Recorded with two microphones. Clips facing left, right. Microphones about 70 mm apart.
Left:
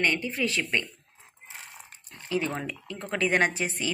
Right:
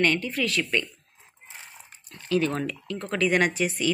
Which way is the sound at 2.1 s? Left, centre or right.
Left.